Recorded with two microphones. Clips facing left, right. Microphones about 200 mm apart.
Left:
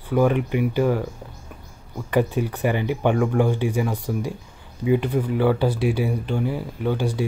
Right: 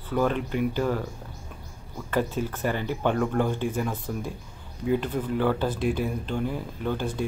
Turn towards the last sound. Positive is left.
turn(degrees=10)  # may be behind; listen again after turning